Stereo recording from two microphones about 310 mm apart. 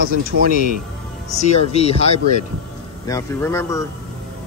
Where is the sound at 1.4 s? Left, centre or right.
Left.